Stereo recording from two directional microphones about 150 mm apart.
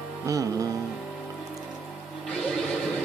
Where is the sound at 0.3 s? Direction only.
25° right (ahead or behind).